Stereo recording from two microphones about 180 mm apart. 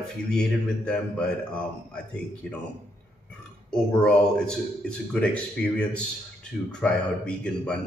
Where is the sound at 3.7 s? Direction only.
5° left (ahead or behind).